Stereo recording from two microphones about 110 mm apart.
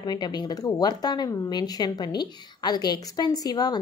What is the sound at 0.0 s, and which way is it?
Speech, 40° left (ahead or behind).